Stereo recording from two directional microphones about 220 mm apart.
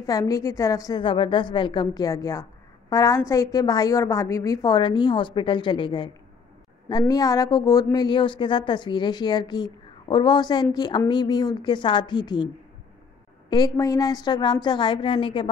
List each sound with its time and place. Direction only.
0.0 s a woman's voice: 15° left (ahead or behind)
13.5 s speech: 15° left (ahead or behind)